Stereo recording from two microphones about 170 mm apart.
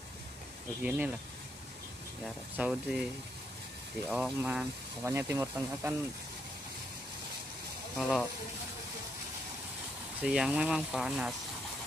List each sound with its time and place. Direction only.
0.8 s speech: 10° right (ahead or behind)
2.5 s speech: 5° right (ahead or behind)
4.1 s speech: 5° right (ahead or behind)
8.0 s speech: 5° left (ahead or behind)
10.2 s speech: 5° right (ahead or behind)